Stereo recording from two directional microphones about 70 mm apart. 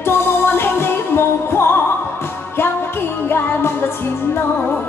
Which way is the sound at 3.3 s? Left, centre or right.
Left.